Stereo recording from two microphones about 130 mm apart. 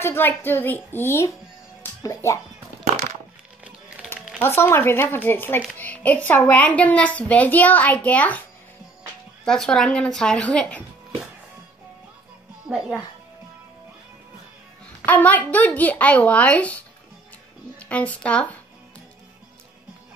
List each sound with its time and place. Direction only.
0.0 s a woman's voice: 20° left (ahead or behind)
3.6 s music: 10° right (ahead or behind)
4.4 s a woman's voice: 20° left (ahead or behind)
15.0 s a woman's voice: 15° left (ahead or behind)